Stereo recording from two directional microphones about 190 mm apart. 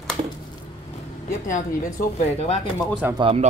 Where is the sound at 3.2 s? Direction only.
30° right (ahead or behind).